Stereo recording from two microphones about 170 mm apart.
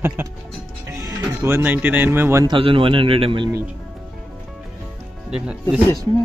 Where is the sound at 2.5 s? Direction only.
30° right (ahead or behind).